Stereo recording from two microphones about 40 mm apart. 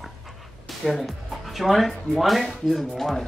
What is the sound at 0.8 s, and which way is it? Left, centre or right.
Speech, centre.